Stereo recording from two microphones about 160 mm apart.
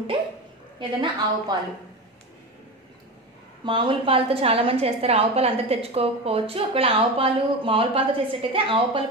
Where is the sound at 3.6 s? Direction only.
30° right (ahead or behind).